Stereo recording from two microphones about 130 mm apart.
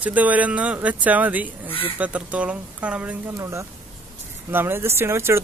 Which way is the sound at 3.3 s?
20° right (ahead or behind).